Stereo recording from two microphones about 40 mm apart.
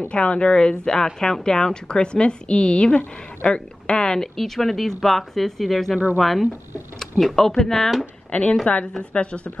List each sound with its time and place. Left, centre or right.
0.1 s speech: left
4.4 s speech: centre
8.3 s a woman's voice: left